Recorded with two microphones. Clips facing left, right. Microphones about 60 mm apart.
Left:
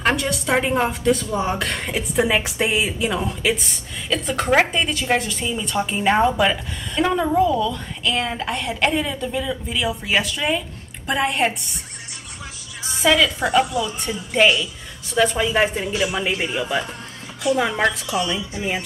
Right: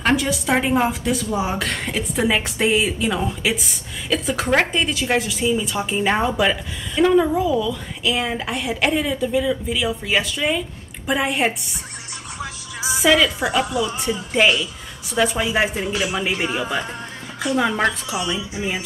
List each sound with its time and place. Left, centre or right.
0.0 s speech: centre
13.0 s speech: centre